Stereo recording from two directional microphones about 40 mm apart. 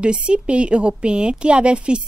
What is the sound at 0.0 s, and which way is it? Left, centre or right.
A woman's voice, right.